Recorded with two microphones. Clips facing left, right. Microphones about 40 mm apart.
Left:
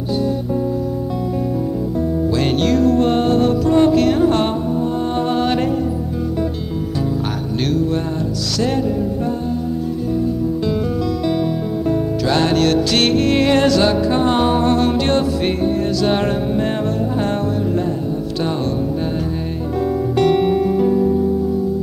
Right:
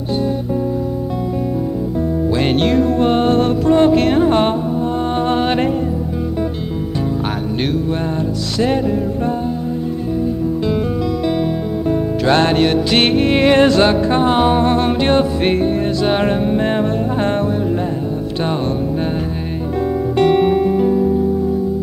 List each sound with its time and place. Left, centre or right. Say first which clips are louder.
2.3 s music: right 2 dB; right
7.6 s music: left 2 dB; centre
12.3 s music: right 2 dB; right
14.2 s music: right 2 dB; centre
20.2 s music: right 2 dB; right